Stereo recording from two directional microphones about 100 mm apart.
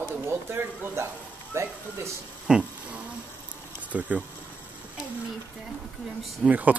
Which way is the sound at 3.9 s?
15° right (ahead or behind).